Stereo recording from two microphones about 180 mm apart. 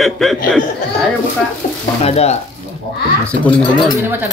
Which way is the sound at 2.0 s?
35° left (ahead or behind).